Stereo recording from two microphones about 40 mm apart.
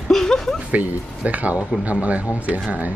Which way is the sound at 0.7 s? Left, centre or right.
Right.